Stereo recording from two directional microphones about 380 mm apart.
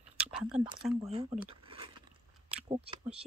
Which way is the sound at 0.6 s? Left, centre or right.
Centre.